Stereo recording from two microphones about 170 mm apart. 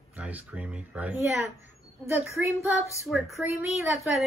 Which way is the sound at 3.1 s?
Centre (ahead or behind).